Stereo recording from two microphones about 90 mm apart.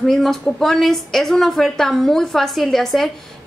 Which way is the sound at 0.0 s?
5° left (ahead or behind).